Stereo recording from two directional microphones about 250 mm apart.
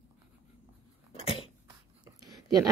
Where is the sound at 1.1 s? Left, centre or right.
Left.